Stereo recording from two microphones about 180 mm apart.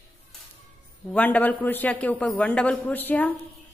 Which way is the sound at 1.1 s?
10° left (ahead or behind).